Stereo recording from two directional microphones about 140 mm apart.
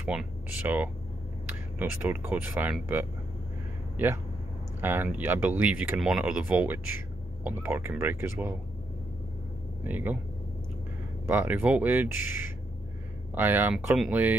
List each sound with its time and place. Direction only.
0.0 s speech: 10° right (ahead or behind)
9.8 s speech: 10° right (ahead or behind)
11.2 s speech: 15° right (ahead or behind)